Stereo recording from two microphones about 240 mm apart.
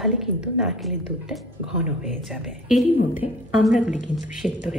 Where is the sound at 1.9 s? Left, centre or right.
Left.